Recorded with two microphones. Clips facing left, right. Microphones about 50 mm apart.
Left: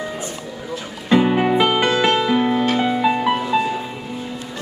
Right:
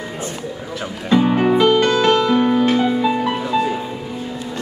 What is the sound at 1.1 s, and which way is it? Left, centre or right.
Music, centre.